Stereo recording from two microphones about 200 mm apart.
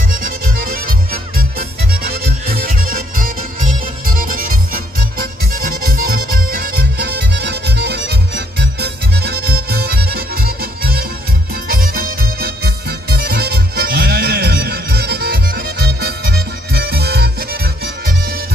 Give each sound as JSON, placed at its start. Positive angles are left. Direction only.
{"t": 0.1, "sound": "music", "side_deg": -45}